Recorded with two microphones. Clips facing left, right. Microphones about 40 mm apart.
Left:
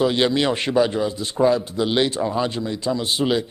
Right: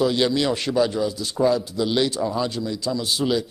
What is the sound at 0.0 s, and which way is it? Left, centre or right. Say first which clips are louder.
A man's voice: left 2 dB; left.